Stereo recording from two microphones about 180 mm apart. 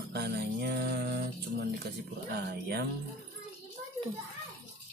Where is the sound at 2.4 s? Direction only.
65° right (ahead or behind).